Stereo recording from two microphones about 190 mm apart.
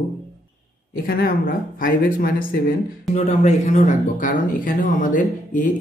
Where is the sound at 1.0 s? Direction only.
50° left (ahead or behind).